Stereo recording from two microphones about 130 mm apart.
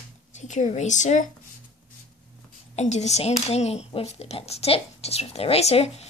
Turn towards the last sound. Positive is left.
turn(degrees=55)  # may be behind; listen again after turning